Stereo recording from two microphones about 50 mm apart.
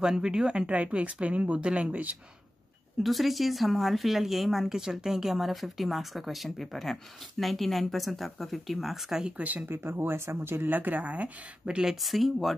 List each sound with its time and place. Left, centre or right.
0.0 s speech: centre; by 2.1 s right
3.0 s speech: centre
9.4 s speech: right
9.7 s speech: right
10.7 s speech: right
11.6 s speech: centre
11.9 s speech: centre